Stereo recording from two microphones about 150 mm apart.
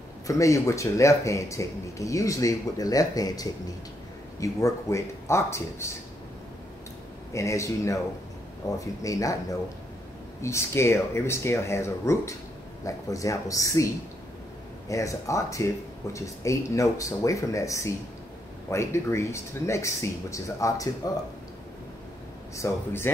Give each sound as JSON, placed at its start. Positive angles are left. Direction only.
{"t": 0.3, "sound": "speech", "side_deg": 20}
{"t": 7.3, "sound": "speech", "side_deg": 20}
{"t": 10.4, "sound": "speech", "side_deg": 20}
{"t": 14.9, "sound": "speech", "side_deg": 20}
{"t": 22.6, "sound": "speech", "side_deg": 20}